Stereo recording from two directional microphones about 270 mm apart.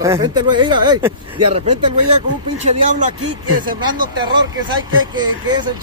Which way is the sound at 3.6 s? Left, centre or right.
Centre.